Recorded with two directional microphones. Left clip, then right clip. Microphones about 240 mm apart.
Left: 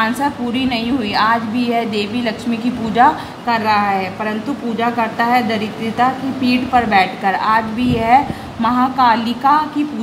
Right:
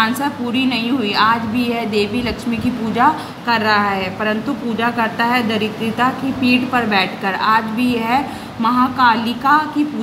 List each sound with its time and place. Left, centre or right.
0.0 s a woman's voice: centre